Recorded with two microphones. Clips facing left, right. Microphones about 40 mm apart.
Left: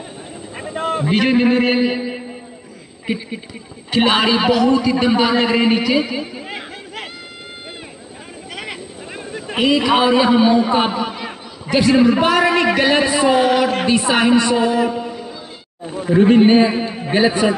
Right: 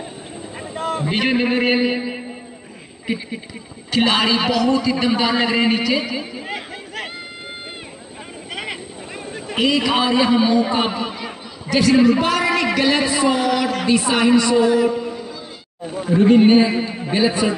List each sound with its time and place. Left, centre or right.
0.7 s a sound: left
1.1 s a man's voice: centre
3.9 s a man's voice: centre
9.6 s a man's voice: centre
11.2 s a man's voice: left
15.0 s a sound: centre
16.3 s a man's voice: left
17.1 s a man's voice: left